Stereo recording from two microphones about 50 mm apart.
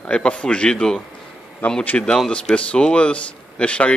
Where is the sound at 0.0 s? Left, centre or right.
Left.